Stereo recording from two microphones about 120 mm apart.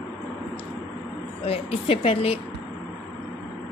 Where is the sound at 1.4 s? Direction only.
55° left (ahead or behind).